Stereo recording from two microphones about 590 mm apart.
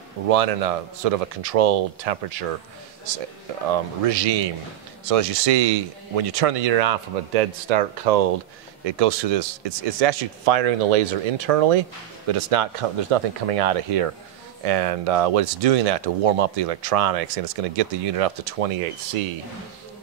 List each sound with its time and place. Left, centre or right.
0.3 s speech: right
4.0 s speech: right
12.3 s speech: right